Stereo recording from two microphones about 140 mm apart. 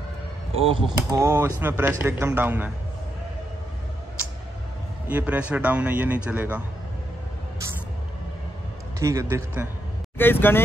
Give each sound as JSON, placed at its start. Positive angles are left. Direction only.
{"t": 0.6, "sound": "speech", "side_deg": -40}
{"t": 1.1, "sound": "a man's voice", "side_deg": -20}
{"t": 5.0, "sound": "a man's voice", "side_deg": -10}
{"t": 9.0, "sound": "speech", "side_deg": -20}
{"t": 10.1, "sound": "speech", "side_deg": 15}